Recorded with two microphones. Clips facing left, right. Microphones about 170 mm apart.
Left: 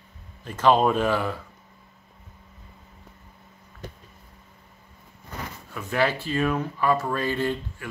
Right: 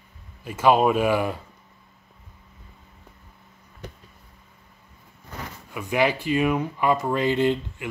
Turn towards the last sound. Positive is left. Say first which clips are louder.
# right 5 dB
turn(degrees=-20)  # may be behind; listen again after turning